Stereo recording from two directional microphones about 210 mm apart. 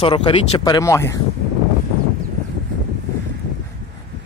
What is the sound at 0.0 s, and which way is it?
Speech, 25° left (ahead or behind).